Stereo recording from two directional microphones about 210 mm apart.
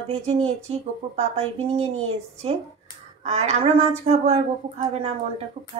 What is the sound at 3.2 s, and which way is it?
A woman's voice, 30° right (ahead or behind).